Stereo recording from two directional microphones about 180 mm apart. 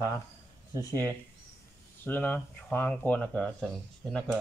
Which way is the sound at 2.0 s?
10° left (ahead or behind).